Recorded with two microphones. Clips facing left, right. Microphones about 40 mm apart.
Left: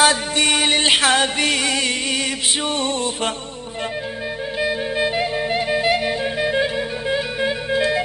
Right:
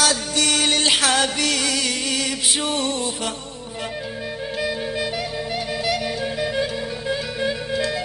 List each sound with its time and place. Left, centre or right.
0.0 s music: left
4.6 s music: left